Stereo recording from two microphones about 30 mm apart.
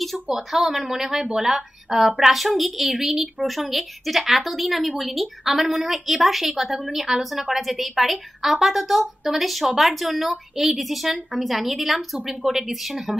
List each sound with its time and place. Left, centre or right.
0.3 s a woman's voice: centre
2.2 s a woman's voice: centre
3.0 s a woman's voice: centre
3.4 s a woman's voice: centre
12.4 s speech: centre